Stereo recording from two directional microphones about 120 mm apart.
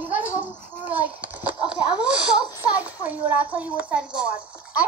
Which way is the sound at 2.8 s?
15° right (ahead or behind).